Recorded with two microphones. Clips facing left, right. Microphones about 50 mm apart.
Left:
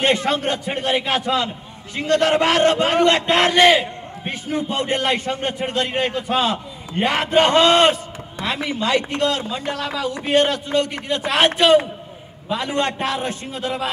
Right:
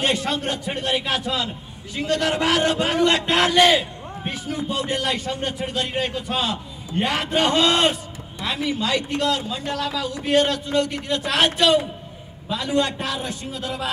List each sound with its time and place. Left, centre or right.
0.0 s a man's voice: left
12.4 s a man's voice: left